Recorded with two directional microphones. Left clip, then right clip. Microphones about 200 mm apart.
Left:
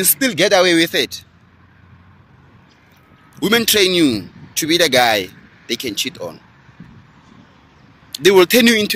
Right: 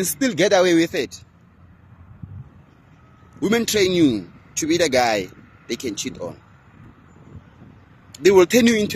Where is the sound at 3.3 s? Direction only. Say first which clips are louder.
Left 5 dB; 5° right (ahead or behind).